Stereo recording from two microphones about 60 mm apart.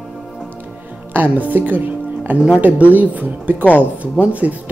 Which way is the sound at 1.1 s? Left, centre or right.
Right.